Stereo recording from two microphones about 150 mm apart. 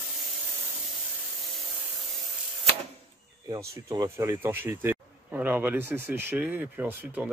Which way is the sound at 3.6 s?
25° right (ahead or behind).